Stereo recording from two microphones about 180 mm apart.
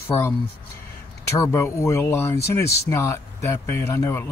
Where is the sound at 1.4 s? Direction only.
15° left (ahead or behind).